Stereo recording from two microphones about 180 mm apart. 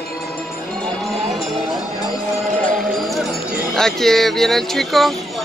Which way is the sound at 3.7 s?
Centre (ahead or behind).